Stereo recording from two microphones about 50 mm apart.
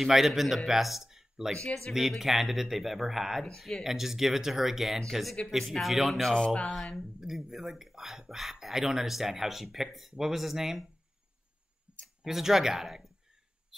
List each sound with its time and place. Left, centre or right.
0.0 s speech: centre
1.5 s speech: centre
1.9 s speech: centre
6.3 s speech: centre
7.2 s speech: centre
12.3 s speech: centre